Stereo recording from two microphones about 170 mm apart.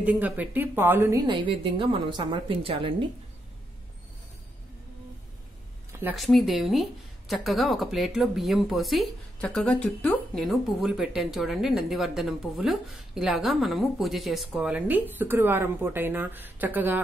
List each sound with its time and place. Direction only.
0.0 s a woman's voice: 10° right (ahead or behind)
1.2 s a woman's voice: 30° right (ahead or behind)
6.1 s speech: centre (ahead or behind)